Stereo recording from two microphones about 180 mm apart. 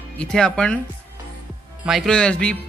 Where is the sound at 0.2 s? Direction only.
5° left (ahead or behind).